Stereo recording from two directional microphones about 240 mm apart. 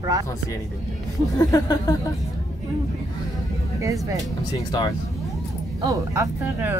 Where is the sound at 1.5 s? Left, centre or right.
Centre.